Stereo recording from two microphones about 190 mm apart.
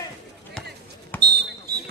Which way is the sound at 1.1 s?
10° left (ahead or behind).